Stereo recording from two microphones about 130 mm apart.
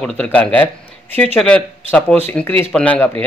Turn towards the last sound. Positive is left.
turn(degrees=10)  # may be behind; listen again after turning